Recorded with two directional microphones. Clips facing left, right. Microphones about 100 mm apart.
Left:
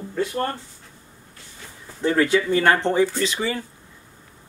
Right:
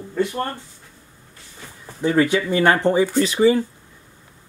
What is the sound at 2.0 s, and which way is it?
Speech, 15° right (ahead or behind).